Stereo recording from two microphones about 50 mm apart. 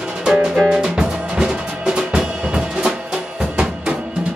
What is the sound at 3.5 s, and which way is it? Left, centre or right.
Drum, centre.